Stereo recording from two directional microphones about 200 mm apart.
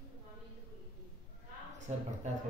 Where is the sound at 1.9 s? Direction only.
35° right (ahead or behind).